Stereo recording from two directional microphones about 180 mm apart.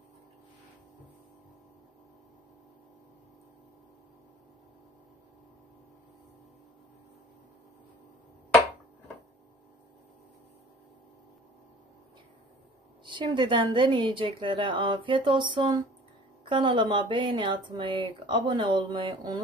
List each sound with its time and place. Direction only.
13.0 s speech: 25° right (ahead or behind)